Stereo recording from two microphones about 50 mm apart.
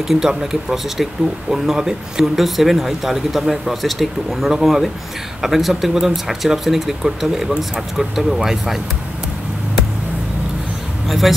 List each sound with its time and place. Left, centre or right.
0.2 s speech: centre
11.1 s a man's voice: centre